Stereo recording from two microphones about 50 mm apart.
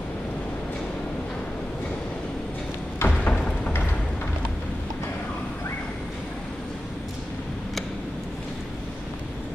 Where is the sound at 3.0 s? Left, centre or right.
Left.